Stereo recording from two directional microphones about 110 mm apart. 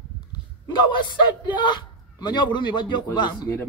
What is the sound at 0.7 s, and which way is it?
A man's voice, 45° left (ahead or behind).